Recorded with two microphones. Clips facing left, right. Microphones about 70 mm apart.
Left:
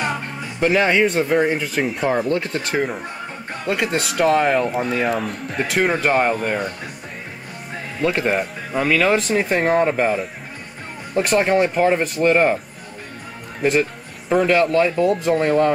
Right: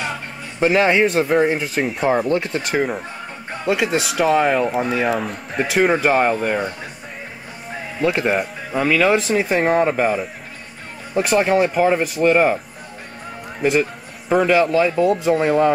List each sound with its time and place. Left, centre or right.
0.6 s speech: centre
2.4 s speech: centre
2.7 s speech: centre
7.7 s speech: centre
13.6 s speech: centre